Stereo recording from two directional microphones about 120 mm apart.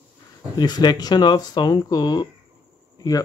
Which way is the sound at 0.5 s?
35° left (ahead or behind).